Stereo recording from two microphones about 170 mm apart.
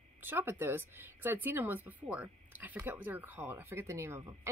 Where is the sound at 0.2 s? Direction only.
15° right (ahead or behind).